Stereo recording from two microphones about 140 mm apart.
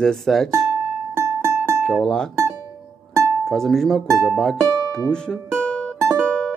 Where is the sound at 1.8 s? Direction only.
5° left (ahead or behind).